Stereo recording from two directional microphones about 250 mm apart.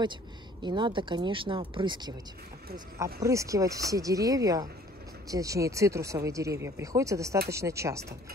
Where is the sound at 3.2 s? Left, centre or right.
Centre.